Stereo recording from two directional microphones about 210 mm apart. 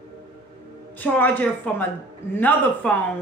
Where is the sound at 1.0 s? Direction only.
10° left (ahead or behind).